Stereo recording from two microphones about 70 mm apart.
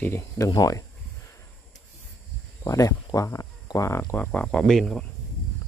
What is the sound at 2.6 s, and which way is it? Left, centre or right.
Speech, left.